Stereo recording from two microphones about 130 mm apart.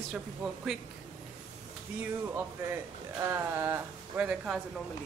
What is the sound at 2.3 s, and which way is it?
Speech, 20° right (ahead or behind).